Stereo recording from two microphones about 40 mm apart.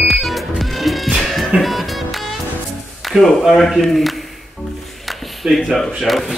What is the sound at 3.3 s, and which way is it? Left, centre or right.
Speech, centre.